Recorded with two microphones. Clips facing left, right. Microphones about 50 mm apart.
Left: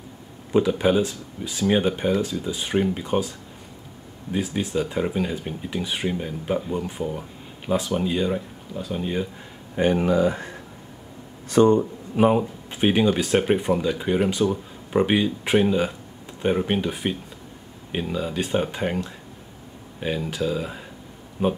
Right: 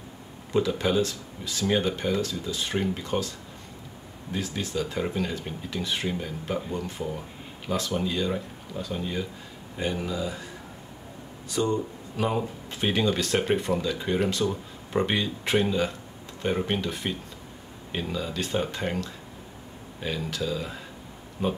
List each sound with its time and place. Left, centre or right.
0.5 s speech: centre
8.3 s speech: centre
8.9 s speech: left
9.8 s speech: left
11.5 s speech: left
12.2 s speech: left